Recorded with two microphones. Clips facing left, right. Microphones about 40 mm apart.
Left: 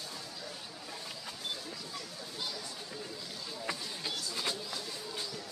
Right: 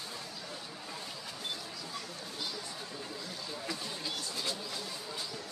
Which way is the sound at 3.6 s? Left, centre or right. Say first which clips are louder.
Left 2 dB; left.